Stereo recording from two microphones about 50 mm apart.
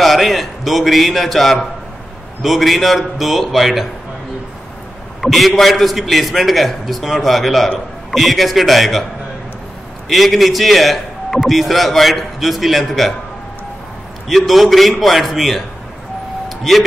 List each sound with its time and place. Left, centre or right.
0.0 s a man's voice: centre
5.2 s a man's voice: centre
10.0 s a man's voice: centre
14.2 s a man's voice: centre
16.4 s vehicle: centre